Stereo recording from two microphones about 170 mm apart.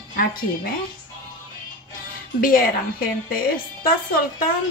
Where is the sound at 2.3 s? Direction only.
55° left (ahead or behind).